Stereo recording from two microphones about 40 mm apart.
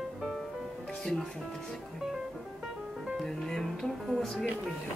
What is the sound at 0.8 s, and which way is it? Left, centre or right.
Music, centre.